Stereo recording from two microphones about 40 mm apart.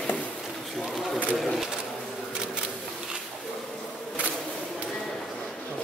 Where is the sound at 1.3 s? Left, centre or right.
Centre.